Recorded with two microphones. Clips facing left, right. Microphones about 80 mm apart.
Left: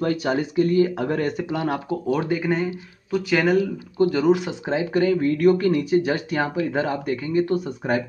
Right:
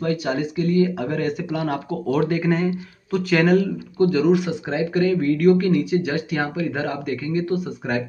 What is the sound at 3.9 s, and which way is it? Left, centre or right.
Speech, left.